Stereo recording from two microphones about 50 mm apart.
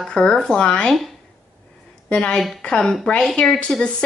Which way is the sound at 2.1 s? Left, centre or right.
Centre.